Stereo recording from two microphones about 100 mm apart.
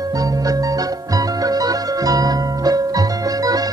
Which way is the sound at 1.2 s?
40° right (ahead or behind).